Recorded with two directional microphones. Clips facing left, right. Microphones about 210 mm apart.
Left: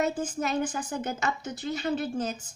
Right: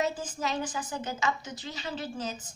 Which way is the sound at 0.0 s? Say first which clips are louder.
Left 3 dB; 55° left (ahead or behind).